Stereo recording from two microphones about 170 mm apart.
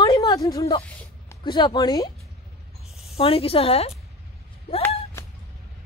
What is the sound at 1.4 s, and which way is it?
Speech, 25° left (ahead or behind).